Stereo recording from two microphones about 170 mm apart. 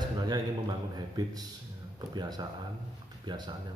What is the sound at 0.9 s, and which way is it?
A man's voice, 25° right (ahead or behind).